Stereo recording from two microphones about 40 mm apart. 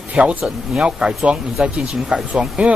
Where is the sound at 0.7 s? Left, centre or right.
Right.